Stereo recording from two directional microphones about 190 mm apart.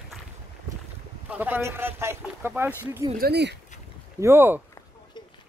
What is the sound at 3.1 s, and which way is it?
Speech, 55° right (ahead or behind).